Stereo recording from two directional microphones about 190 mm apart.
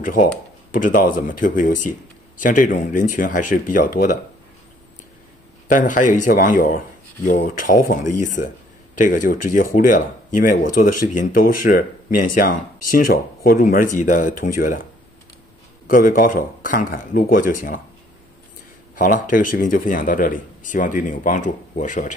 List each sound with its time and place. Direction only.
0.7 s speech: 45° left (ahead or behind)
5.7 s speech: 45° left (ahead or behind)
15.9 s speech: 45° left (ahead or behind)
18.9 s speech: 45° left (ahead or behind)